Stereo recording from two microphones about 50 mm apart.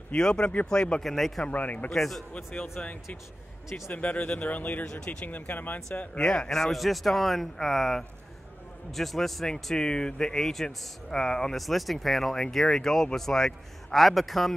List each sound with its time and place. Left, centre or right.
0.1 s speech: centre
1.0 s a man's voice: centre
1.4 s speech: left
1.9 s a man's voice: centre
2.3 s speech: left
6.1 s a man's voice: centre
9.5 s speech: centre
11.5 s a man's voice: centre